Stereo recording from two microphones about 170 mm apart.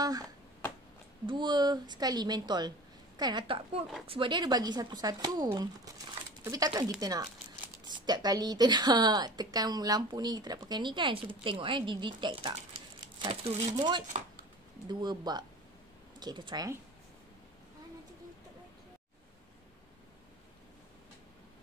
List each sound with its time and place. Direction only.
1.2 s a woman's voice: 25° right (ahead or behind)